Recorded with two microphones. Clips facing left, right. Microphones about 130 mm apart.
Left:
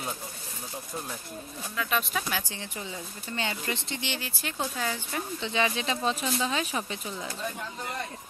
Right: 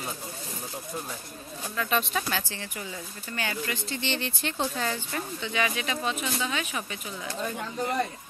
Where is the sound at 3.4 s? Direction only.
25° left (ahead or behind); by 5.2 s 10° left (ahead or behind).